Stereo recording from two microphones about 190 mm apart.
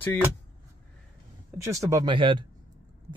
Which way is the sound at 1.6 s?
15° right (ahead or behind).